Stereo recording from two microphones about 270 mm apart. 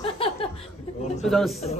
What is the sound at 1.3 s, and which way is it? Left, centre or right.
Speech, centre.